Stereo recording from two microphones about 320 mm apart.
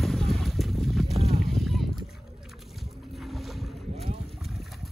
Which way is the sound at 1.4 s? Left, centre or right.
Centre.